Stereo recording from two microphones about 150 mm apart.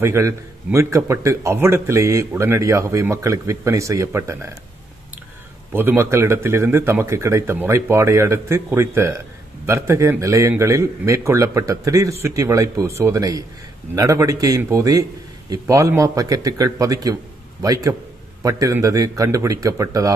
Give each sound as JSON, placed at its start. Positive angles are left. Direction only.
{"t": 0.0, "sound": "speech", "side_deg": -20}
{"t": 5.7, "sound": "a man's voice", "side_deg": -15}